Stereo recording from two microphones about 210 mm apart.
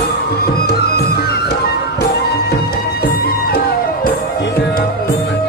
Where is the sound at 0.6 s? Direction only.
50° left (ahead or behind).